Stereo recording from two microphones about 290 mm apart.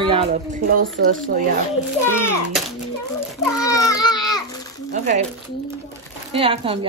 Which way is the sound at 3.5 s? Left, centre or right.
Centre.